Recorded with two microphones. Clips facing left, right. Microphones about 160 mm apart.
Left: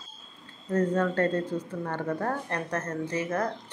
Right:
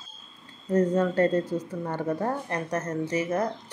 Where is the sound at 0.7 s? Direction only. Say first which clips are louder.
Right 3 dB; 10° right (ahead or behind).